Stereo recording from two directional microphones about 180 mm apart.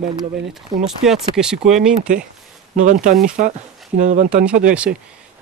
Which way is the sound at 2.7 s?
45° right (ahead or behind).